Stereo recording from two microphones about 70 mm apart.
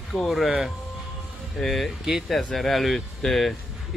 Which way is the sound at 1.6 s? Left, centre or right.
Centre.